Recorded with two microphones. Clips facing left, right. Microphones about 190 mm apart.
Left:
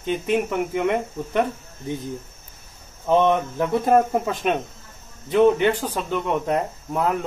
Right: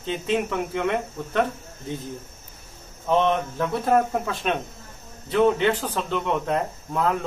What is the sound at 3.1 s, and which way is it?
Speech, 15° left (ahead or behind).